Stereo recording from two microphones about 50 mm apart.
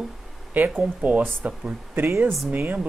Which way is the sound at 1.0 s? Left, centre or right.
Right.